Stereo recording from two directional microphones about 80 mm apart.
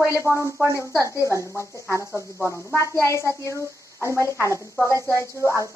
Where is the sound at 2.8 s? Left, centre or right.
Right.